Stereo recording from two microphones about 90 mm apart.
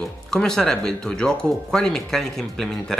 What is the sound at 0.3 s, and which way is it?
Speech, 5° left (ahead or behind).